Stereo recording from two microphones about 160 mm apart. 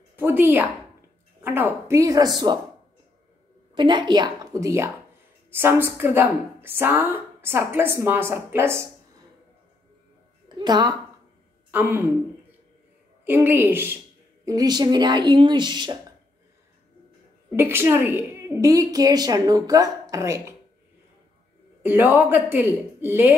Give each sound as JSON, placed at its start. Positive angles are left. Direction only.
{"t": 0.1, "sound": "a woman's voice", "side_deg": -15}
{"t": 3.7, "sound": "a woman's voice", "side_deg": -30}
{"t": 10.6, "sound": "a woman's voice", "side_deg": -25}
{"t": 11.7, "sound": "a woman's voice", "side_deg": -10}
{"t": 13.2, "sound": "a woman's voice", "side_deg": -15}
{"t": 14.4, "sound": "a woman's voice", "side_deg": -25}
{"t": 17.6, "sound": "a woman's voice", "side_deg": -15}
{"t": 21.8, "sound": "a woman's voice", "side_deg": -10}